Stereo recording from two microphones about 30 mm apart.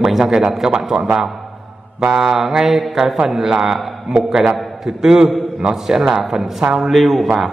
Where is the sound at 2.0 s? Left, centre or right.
Centre.